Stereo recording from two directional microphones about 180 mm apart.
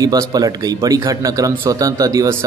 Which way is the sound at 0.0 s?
20° right (ahead or behind).